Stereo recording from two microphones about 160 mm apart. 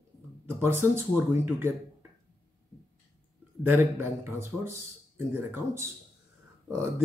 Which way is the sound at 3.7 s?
15° right (ahead or behind).